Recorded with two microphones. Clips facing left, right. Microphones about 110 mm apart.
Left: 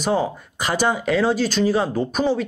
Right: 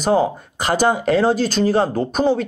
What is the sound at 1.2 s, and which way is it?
Speech, centre (ahead or behind).